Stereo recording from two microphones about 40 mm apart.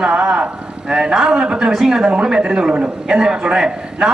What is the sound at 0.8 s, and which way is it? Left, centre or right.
A man's voice, right.